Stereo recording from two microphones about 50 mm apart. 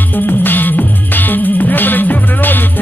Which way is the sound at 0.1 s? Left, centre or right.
Left.